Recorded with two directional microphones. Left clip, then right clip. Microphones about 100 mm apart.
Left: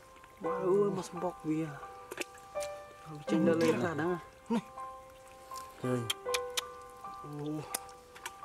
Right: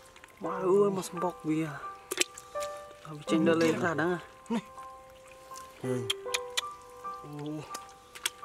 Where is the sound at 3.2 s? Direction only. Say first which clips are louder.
Right 3 dB; 40° right (ahead or behind).